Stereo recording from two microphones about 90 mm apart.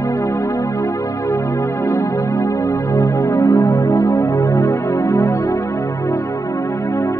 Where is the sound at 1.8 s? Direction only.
35° left (ahead or behind).